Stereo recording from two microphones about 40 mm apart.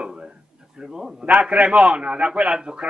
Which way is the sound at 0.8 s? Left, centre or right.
Centre.